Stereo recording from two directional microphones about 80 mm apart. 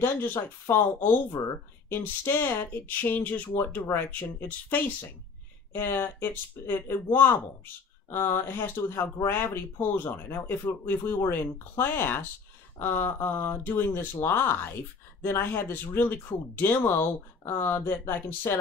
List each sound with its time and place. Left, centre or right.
0.0 s speech: left